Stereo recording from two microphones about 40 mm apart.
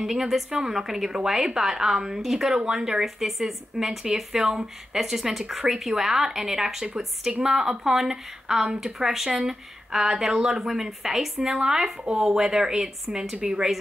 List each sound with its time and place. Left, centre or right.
0.0 s a woman's voice: centre